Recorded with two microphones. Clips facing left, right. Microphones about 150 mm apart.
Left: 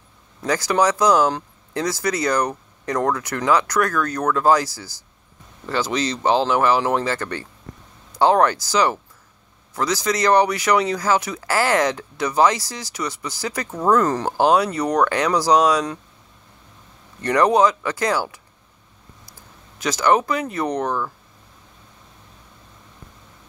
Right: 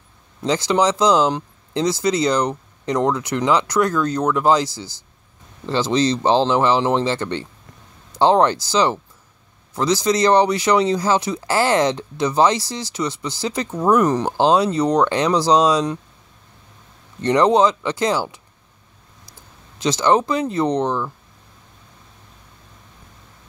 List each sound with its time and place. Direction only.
0.4 s speech: 20° right (ahead or behind)
17.2 s speech: 25° right (ahead or behind)
19.8 s speech: 25° right (ahead or behind)